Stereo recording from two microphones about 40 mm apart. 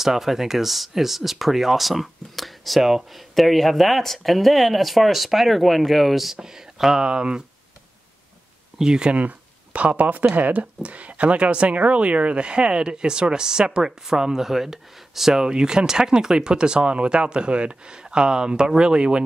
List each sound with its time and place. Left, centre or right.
0.0 s speech: centre
6.3 s speech: centre
7.1 s speech: right
8.7 s speech: centre
9.1 s speech: right